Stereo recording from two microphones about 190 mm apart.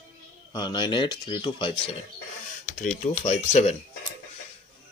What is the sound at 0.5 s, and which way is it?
Speech, 20° left (ahead or behind).